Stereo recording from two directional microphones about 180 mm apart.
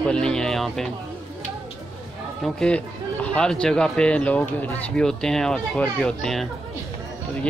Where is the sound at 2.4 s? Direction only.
5° left (ahead or behind).